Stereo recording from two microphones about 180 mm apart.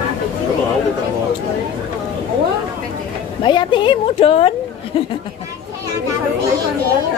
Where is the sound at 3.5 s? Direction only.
25° left (ahead or behind).